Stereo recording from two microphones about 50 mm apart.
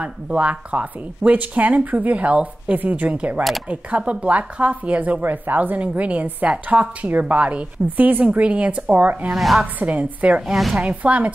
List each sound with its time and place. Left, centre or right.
0.0 s speech: right
9.3 s a woman's voice: centre
9.8 s speech: right
10.4 s a woman's voice: centre
10.9 s speech: right